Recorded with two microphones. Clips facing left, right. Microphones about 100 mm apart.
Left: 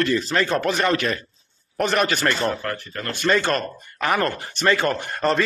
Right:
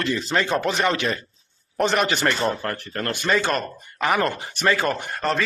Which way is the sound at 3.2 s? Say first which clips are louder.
Left 3 dB; 10° right (ahead or behind).